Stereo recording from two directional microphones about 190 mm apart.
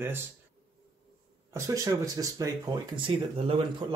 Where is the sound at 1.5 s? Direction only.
15° right (ahead or behind).